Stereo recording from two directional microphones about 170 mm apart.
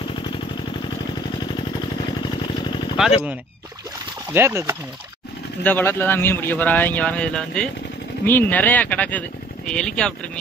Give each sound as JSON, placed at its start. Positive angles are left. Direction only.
{"t": 3.0, "sound": "speech", "side_deg": 0}
{"t": 4.3, "sound": "speech", "side_deg": -15}
{"t": 5.6, "sound": "speech", "side_deg": 10}